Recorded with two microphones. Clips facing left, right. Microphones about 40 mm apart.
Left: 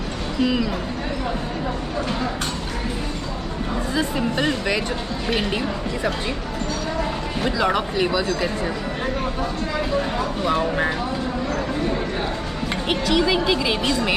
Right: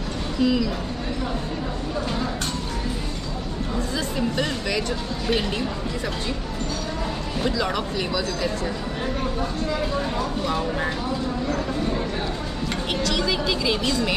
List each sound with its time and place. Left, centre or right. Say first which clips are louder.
0.4 s speech: even; left
3.9 s speech: left 4 dB; centre
7.4 s speech: left 4 dB; centre
10.4 s speech: left 7 dB; left
12.9 s speech: left 5 dB; centre